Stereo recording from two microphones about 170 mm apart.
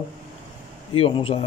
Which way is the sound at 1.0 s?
30° left (ahead or behind).